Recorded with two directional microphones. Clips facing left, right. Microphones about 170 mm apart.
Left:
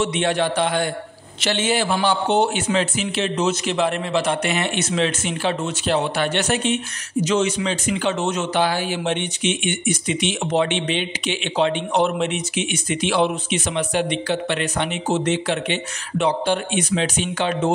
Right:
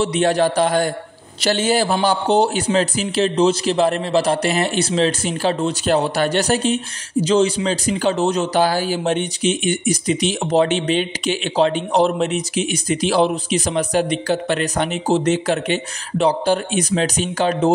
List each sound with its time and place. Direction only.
0.0 s a man's voice: 35° right (ahead or behind)